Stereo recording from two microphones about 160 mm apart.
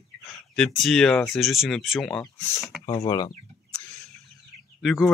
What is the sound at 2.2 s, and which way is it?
Speech, 20° left (ahead or behind).